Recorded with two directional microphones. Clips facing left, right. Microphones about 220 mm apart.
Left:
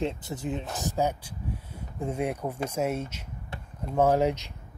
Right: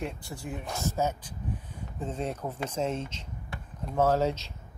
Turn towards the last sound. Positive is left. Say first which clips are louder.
# left 2 dB
turn(degrees=15)  # may be behind; listen again after turning